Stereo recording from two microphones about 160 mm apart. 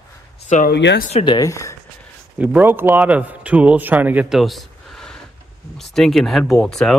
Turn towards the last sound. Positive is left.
turn(degrees=0)  # may be behind; listen again after turning